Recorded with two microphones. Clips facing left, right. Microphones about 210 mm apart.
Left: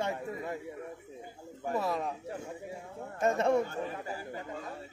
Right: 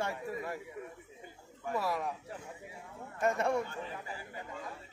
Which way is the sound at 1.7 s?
25° left (ahead or behind).